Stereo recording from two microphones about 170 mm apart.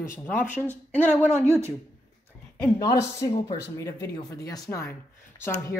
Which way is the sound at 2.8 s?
20° left (ahead or behind).